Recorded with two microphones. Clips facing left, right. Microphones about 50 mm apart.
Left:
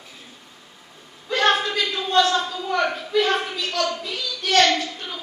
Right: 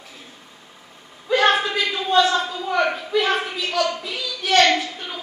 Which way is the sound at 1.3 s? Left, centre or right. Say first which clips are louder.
Right 2 dB; centre.